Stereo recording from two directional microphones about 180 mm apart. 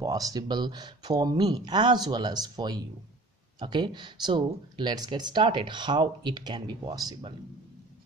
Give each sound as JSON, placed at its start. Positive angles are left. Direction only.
{"t": 0.0, "sound": "speech", "side_deg": -20}